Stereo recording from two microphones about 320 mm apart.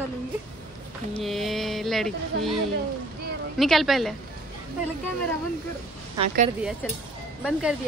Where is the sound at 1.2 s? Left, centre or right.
Centre.